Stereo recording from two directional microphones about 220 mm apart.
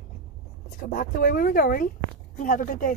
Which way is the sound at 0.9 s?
40° left (ahead or behind).